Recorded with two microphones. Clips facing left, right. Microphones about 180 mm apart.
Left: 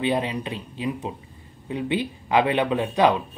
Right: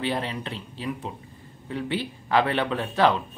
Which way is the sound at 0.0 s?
15° left (ahead or behind).